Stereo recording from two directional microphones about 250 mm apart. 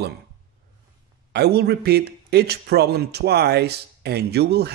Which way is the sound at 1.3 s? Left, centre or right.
Right.